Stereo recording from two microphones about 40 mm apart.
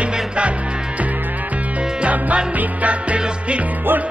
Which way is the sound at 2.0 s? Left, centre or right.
Right.